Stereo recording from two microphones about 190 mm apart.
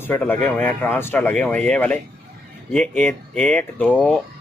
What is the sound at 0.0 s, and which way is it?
Speech, 10° left (ahead or behind).